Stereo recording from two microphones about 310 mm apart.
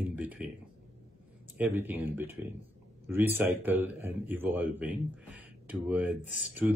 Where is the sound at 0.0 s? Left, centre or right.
Centre.